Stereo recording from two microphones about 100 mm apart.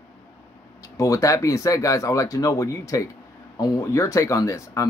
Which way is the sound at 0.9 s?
35° left (ahead or behind).